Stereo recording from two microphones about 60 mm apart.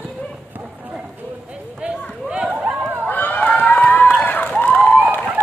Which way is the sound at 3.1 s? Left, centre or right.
Left.